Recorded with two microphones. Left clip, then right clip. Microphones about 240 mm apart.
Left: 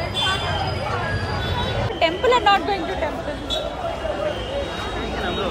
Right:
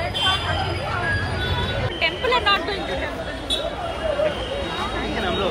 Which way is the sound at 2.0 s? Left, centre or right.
Left.